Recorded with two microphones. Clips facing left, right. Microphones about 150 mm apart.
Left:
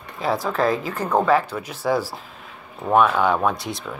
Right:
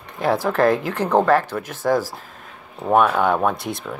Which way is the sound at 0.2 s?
65° right (ahead or behind).